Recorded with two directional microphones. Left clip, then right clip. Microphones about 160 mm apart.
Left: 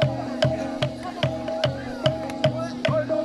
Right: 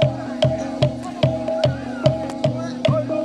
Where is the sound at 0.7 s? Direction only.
25° right (ahead or behind).